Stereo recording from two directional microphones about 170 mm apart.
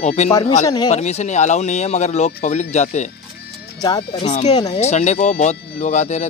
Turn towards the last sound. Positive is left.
turn(degrees=45)  # may be behind; listen again after turning